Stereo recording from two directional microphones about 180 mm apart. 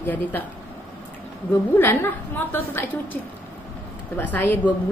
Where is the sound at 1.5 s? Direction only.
10° left (ahead or behind).